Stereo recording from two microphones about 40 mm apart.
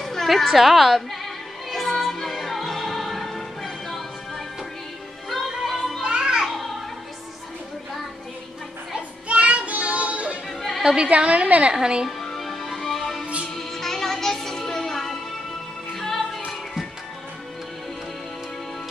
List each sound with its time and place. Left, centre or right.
0.0 s music: centre
5.3 s music: centre
6.0 s music: centre
9.4 s child singing: right
11.1 s a woman's voice: right
11.7 s speech: centre
12.2 s music: centre